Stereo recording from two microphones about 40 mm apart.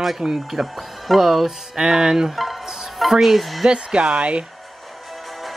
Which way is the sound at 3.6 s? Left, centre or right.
Right.